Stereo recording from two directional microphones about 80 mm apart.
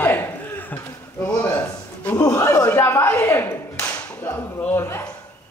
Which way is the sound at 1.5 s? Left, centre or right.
Left.